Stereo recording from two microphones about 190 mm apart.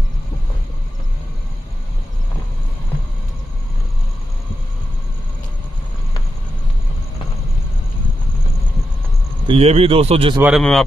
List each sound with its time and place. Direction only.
9.5 s speech: 30° right (ahead or behind)
10.4 s speech: centre (ahead or behind)